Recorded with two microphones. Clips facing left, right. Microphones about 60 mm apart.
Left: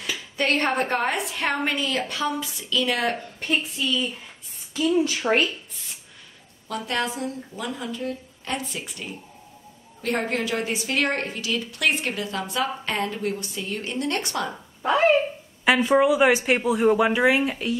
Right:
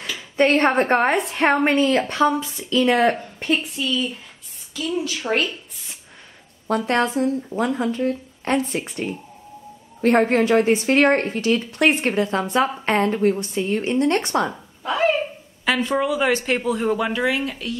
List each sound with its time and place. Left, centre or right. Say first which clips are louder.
0.4 s a woman's voice: right 6 dB; right
3.5 s a woman's voice: right 1 dB; centre
4.7 s speech: left 3 dB; centre
6.9 s a woman's voice: right 6 dB; right
15.6 s speech: left 3 dB; centre